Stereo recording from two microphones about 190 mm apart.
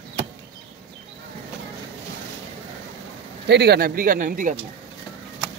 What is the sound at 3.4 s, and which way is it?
Speech, 60° right (ahead or behind).